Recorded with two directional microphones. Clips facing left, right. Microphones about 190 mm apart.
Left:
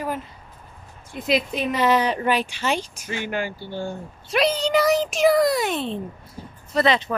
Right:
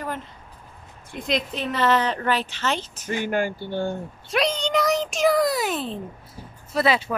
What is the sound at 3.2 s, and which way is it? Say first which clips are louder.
Speech: right 3 dB; 50° right (ahead or behind).